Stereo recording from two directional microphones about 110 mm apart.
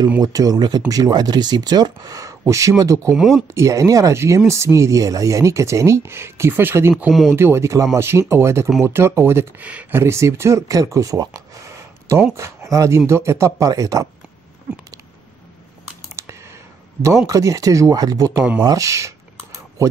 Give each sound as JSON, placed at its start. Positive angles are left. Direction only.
{"t": 0.2, "sound": "speech", "side_deg": -35}
{"t": 3.2, "sound": "speech", "side_deg": -5}
{"t": 3.5, "sound": "speech", "side_deg": -30}
{"t": 7.1, "sound": "speech", "side_deg": 0}
{"t": 7.3, "sound": "speech", "side_deg": -25}
{"t": 16.2, "sound": "computer keyboard", "side_deg": -25}
{"t": 17.3, "sound": "speech", "side_deg": -30}
{"t": 18.6, "sound": "a sound", "side_deg": -30}